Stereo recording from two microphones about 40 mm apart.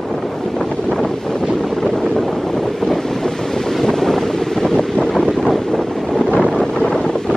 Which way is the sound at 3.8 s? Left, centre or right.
Centre.